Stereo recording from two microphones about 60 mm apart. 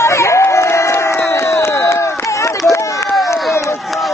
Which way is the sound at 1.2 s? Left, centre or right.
Left.